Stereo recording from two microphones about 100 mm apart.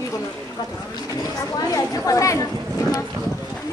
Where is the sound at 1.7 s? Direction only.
35° left (ahead or behind).